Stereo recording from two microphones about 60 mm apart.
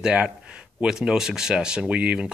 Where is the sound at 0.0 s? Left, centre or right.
Centre.